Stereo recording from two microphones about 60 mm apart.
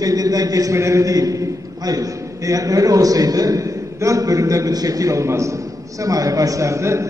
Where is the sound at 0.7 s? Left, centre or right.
Right.